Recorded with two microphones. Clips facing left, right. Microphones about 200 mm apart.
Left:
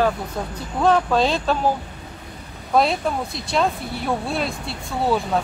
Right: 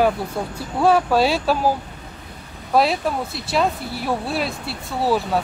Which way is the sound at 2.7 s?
5° right (ahead or behind).